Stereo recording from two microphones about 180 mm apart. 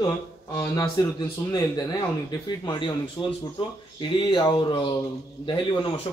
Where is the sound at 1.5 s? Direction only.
20° left (ahead or behind).